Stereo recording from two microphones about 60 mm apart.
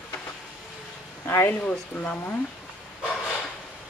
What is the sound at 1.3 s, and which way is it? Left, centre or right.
Speech, left.